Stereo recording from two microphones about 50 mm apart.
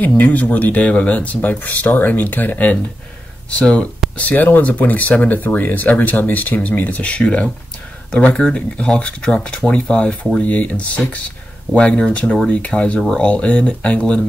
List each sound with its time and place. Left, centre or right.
0.2 s speech: left
4.2 s speech: left
7.2 s speech: centre